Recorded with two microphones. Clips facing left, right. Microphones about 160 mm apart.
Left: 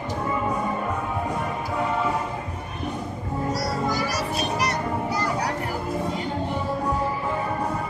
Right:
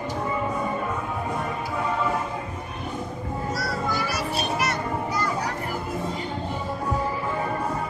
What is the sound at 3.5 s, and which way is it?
Music, 40° left (ahead or behind).